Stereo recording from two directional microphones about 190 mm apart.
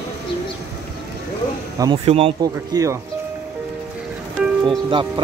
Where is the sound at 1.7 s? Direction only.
20° right (ahead or behind).